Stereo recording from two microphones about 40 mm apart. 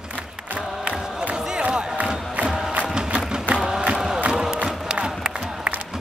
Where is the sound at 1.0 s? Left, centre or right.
Centre.